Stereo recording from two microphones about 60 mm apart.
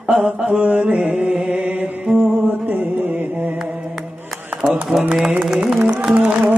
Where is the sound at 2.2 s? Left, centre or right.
Right.